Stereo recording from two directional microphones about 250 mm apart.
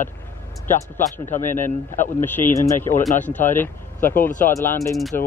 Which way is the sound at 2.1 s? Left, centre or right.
Centre.